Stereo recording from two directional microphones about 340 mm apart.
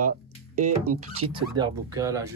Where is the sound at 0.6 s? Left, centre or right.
Right.